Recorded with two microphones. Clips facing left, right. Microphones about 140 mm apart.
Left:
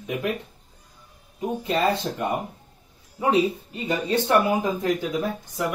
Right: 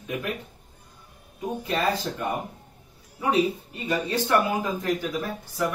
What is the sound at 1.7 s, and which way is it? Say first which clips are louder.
A man's voice: left 3 dB; 25° left (ahead or behind).